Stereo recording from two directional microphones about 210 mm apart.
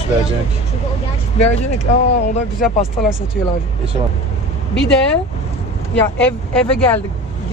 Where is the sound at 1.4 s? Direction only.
30° left (ahead or behind).